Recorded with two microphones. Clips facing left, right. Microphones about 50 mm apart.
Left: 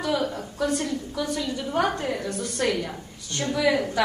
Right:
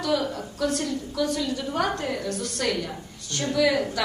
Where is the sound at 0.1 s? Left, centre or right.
Centre.